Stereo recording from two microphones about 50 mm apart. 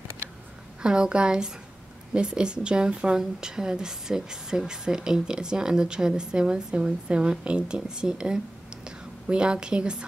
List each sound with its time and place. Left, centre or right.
0.8 s a woman's voice: centre